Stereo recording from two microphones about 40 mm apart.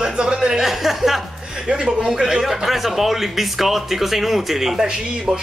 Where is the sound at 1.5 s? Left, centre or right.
Centre.